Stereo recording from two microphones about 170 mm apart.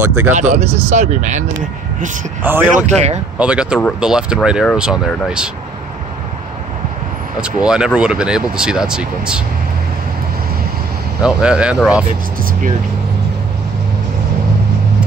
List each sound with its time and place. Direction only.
0.0 s speech: 10° right (ahead or behind)
0.3 s speech: 45° right (ahead or behind)
2.4 s speech: 10° right (ahead or behind)
7.3 s speech: 5° right (ahead or behind)
11.2 s speech: 5° right (ahead or behind)